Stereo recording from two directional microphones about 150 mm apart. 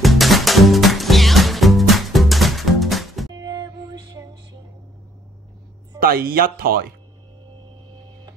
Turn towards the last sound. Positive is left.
turn(degrees=-75)  # may be behind; listen again after turning